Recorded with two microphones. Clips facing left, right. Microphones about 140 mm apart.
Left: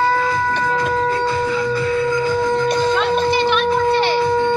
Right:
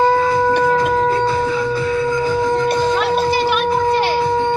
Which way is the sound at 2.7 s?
5° right (ahead or behind).